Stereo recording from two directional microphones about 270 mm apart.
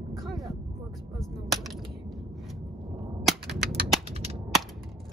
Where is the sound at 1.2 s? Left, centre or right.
Centre.